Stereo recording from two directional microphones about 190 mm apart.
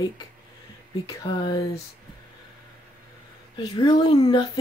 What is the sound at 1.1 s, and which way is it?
Speech, 25° left (ahead or behind).